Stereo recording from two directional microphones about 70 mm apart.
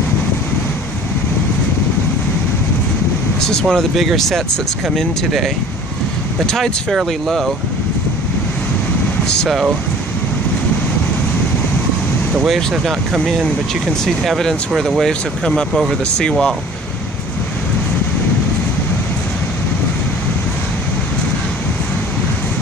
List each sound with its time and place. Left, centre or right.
3.3 s speech: centre
12.4 s speech: centre